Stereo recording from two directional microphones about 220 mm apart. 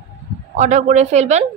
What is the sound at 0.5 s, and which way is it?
Speech, 35° right (ahead or behind).